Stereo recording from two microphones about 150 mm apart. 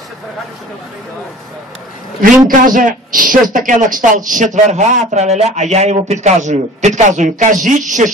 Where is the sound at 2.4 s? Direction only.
65° right (ahead or behind).